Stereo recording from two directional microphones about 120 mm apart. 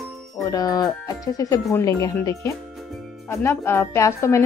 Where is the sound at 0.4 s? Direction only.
30° left (ahead or behind).